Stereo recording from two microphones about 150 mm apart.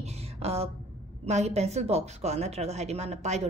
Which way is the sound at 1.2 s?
45° right (ahead or behind).